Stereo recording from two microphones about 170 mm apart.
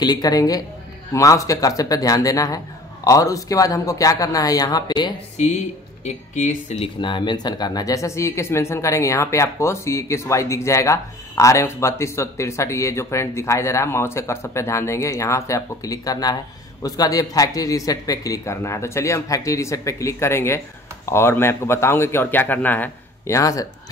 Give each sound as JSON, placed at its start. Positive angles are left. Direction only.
{"t": 0.0, "sound": "a man's voice", "side_deg": 25}
{"t": 6.0, "sound": "speech", "side_deg": 45}